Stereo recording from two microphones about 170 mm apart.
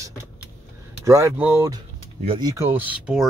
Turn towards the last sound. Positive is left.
turn(degrees=-5)  # may be behind; listen again after turning